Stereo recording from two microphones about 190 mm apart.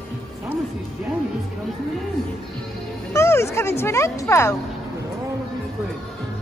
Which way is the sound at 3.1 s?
15° left (ahead or behind).